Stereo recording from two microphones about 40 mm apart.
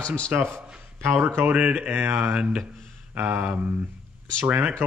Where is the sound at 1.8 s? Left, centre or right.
Right.